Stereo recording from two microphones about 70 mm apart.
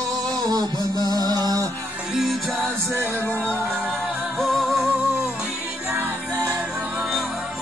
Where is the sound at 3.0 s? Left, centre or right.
Left.